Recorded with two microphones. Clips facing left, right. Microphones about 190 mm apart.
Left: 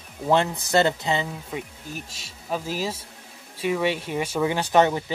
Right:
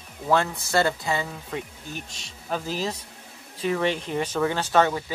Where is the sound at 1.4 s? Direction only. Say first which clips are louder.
Even; 5° left (ahead or behind).